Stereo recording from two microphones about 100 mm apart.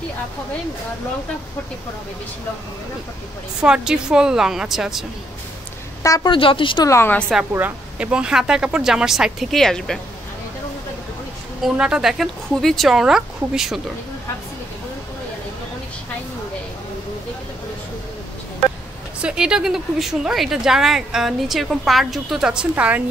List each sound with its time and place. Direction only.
3.6 s speech: 10° right (ahead or behind)
6.2 s speech: 60° left (ahead or behind)
6.8 s a woman's voice: 30° left (ahead or behind)
7.5 s speech: 15° right (ahead or behind); by 9.9 s 5° left (ahead or behind)
11.7 s a woman's voice: 10° right (ahead or behind)
19.2 s a woman's voice: 10° right (ahead or behind)